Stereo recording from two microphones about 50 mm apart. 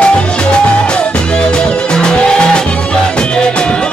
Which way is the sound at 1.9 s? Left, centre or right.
Centre.